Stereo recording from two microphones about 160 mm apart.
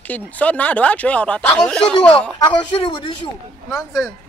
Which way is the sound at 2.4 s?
30° left (ahead or behind).